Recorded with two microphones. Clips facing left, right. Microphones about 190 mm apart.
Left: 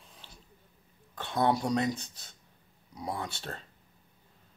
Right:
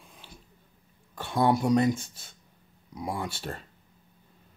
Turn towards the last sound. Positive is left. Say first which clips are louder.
# right 3 dB
turn(degrees=-10)  # may be behind; listen again after turning